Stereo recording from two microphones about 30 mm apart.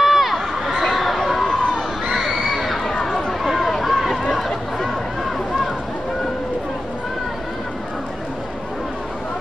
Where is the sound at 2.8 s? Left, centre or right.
Centre.